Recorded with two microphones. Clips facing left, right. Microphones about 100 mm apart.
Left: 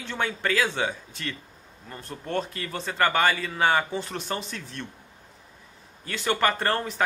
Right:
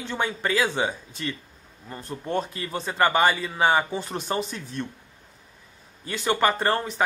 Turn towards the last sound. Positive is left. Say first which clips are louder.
# right 2 dB
turn(degrees=-10)  # may be behind; listen again after turning